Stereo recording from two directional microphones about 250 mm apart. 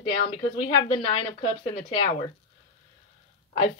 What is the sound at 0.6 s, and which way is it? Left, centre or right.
Speech, left.